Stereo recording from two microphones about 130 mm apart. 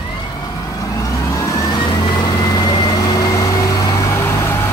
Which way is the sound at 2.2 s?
30° left (ahead or behind).